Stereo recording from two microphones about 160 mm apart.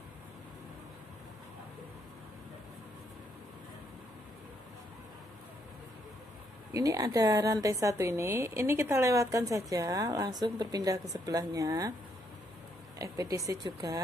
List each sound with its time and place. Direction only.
6.7 s a woman's voice: 20° right (ahead or behind)
13.0 s a woman's voice: 20° right (ahead or behind)